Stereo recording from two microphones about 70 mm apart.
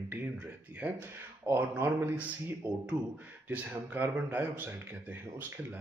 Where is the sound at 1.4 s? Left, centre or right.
Right.